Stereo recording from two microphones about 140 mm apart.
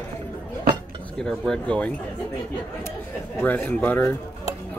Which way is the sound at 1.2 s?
5° left (ahead or behind).